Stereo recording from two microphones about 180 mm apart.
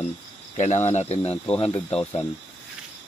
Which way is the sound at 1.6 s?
30° left (ahead or behind).